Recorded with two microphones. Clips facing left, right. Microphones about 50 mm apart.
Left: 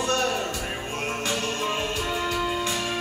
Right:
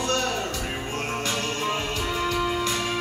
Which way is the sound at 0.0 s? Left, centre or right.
Centre.